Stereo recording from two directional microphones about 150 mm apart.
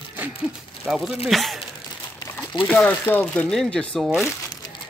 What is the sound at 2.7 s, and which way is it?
Speech, 10° left (ahead or behind).